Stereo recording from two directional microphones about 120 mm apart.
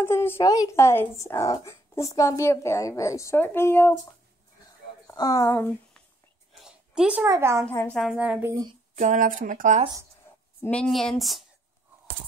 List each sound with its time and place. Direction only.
0.0 s speech: 20° left (ahead or behind)
0.4 s speech: 30° left (ahead or behind)
5.0 s speech: 30° left (ahead or behind)
6.6 s a sound: 10° right (ahead or behind)
7.2 s speech: 25° right (ahead or behind)
7.6 s speech: 20° left (ahead or behind)
8.2 s speech: 10° right (ahead or behind)
8.9 s speech: 90° right
10.6 s speech: 10° left (ahead or behind)